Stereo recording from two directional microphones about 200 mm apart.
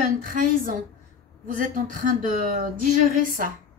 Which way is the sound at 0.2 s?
45° right (ahead or behind).